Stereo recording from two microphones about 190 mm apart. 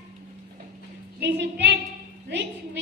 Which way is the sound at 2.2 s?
65° right (ahead or behind).